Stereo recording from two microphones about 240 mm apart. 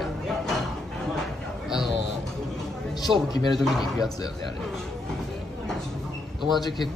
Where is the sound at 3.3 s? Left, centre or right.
Centre.